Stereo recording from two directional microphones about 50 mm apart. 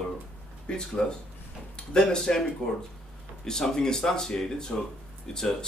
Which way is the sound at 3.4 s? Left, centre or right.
Centre.